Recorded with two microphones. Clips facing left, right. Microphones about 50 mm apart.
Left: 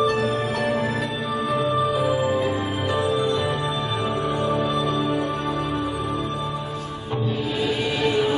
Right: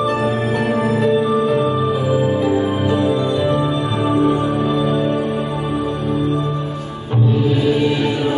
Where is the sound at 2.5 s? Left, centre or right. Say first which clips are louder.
Right 7 dB; centre.